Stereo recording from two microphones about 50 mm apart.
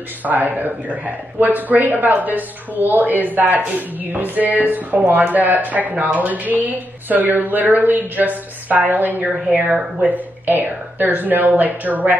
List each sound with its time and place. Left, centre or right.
0.2 s speech: right
9.2 s speech: right